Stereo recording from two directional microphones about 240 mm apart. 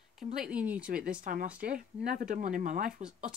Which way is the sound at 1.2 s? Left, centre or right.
Right.